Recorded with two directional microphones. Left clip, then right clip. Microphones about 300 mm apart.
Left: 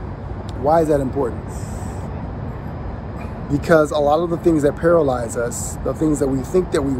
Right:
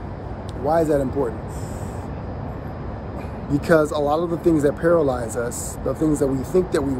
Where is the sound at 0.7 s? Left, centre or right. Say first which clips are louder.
Left 3 dB; centre.